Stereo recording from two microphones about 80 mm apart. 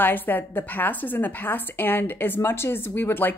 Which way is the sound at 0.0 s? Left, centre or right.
Left.